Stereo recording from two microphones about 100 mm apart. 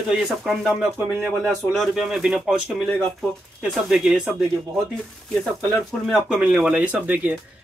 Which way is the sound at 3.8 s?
5° right (ahead or behind).